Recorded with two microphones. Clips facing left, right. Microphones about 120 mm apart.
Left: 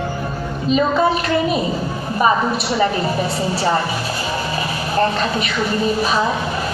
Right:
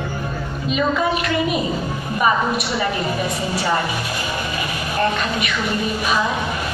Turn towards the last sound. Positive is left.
turn(degrees=35)  # may be behind; listen again after turning